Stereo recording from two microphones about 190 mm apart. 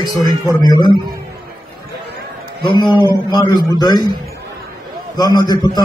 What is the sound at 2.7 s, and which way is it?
A man's voice, 25° left (ahead or behind).